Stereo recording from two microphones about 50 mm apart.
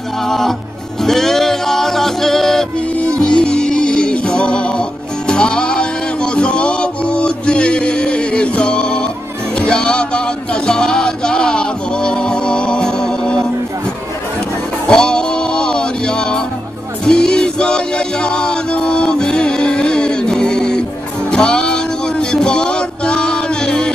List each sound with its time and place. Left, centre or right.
0.2 s music: centre
3.2 s music: centre
14.9 s music: centre